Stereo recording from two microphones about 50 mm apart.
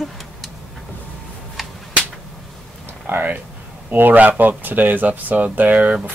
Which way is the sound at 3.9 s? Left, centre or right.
Right.